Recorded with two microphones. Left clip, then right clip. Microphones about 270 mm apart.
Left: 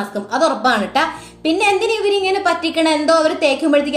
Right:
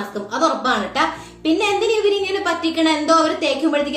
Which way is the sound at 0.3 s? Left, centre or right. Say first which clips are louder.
Left 3 dB; left.